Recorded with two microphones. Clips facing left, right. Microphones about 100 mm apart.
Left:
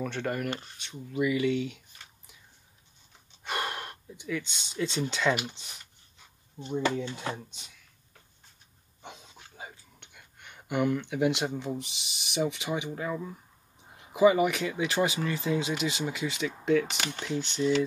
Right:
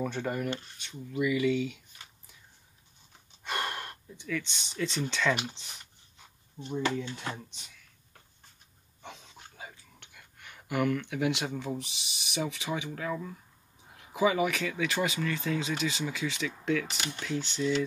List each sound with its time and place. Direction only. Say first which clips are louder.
0.0 s speech: even; 10° right (ahead or behind)
3.4 s speech: left 1 dB; 10° left (ahead or behind)
6.6 s speech: left 2 dB; 20° left (ahead or behind)
10.7 s speech: left 1 dB; 20° left (ahead or behind)
11.2 s speech: left 3 dB; centre (ahead or behind)
15.0 s speech: left 3 dB; 25° left (ahead or behind); by 16.8 s 5° left (ahead or behind)
17.6 s speech: left 3 dB; 20° left (ahead or behind)